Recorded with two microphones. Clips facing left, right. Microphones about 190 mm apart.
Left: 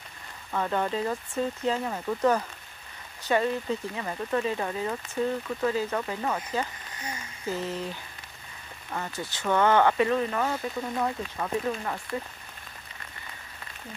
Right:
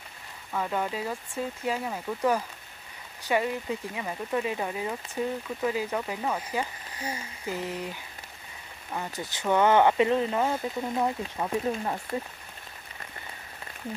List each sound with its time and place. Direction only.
0.5 s speech: 10° right (ahead or behind)
7.0 s speech: 30° right (ahead or behind)
7.4 s speech: 15° right (ahead or behind)